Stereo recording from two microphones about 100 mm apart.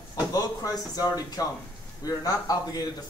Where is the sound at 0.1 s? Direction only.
40° left (ahead or behind).